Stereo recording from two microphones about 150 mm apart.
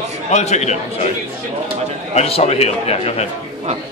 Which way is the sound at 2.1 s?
45° left (ahead or behind).